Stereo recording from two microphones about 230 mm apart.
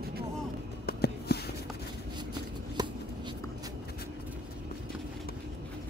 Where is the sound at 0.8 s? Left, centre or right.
Left.